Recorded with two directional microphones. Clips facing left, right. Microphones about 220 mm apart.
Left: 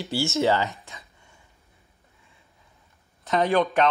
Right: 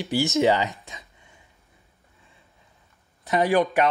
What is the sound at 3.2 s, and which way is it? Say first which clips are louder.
Speech: right 1 dB; 10° right (ahead or behind).